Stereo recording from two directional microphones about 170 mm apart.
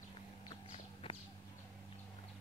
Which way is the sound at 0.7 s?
35° left (ahead or behind).